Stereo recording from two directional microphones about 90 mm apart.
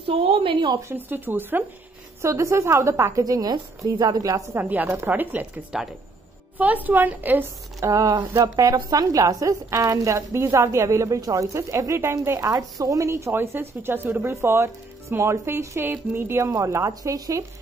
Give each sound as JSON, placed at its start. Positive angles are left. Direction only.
{"t": 0.0, "sound": "a woman's voice", "side_deg": -90}
{"t": 0.9, "sound": "speech", "side_deg": -20}
{"t": 2.2, "sound": "a woman's voice", "side_deg": -35}
{"t": 4.6, "sound": "speech", "side_deg": -20}
{"t": 5.7, "sound": "speech", "side_deg": -5}
{"t": 6.6, "sound": "speech", "side_deg": -20}
{"t": 7.8, "sound": "a woman's voice", "side_deg": -40}